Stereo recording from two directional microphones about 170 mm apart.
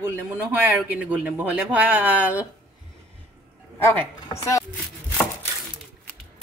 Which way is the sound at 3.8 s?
15° left (ahead or behind).